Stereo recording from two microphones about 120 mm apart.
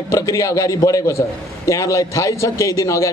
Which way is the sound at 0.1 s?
25° left (ahead or behind).